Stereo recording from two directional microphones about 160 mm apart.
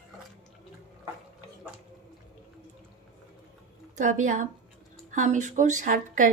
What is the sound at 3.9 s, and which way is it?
A woman's voice, 55° right (ahead or behind).